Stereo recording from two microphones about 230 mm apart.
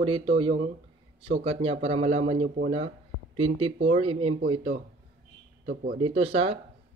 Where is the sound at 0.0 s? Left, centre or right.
Right.